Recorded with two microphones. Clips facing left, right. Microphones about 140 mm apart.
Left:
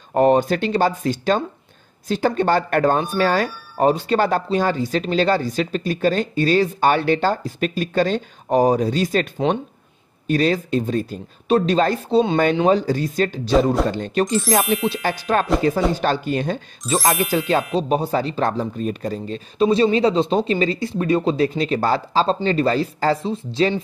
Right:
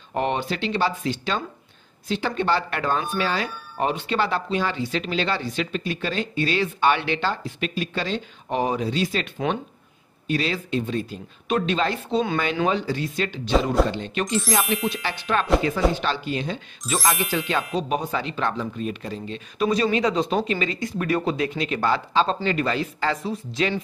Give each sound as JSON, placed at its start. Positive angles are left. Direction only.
{"t": 0.1, "sound": "speech", "side_deg": 40}
{"t": 14.4, "sound": "speech", "side_deg": 0}
{"t": 15.0, "sound": "speech", "side_deg": 45}
{"t": 17.0, "sound": "speech", "side_deg": 0}
{"t": 17.7, "sound": "speech", "side_deg": 35}
{"t": 19.6, "sound": "speech", "side_deg": 30}